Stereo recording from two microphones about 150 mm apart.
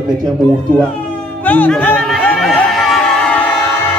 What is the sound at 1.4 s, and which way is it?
Speech, 10° left (ahead or behind).